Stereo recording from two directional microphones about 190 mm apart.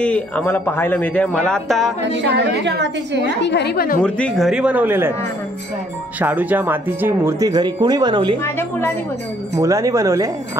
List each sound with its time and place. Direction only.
0.0 s a man's voice: 5° left (ahead or behind)
2.0 s a woman's voice: 65° right (ahead or behind)
3.4 s a woman's voice: 60° left (ahead or behind)
4.0 s a man's voice: 5° left (ahead or behind)
6.1 s speech: 10° right (ahead or behind); by 8.4 s 25° right (ahead or behind)
8.5 s a man's voice: 10° left (ahead or behind)
9.6 s speech: 15° right (ahead or behind)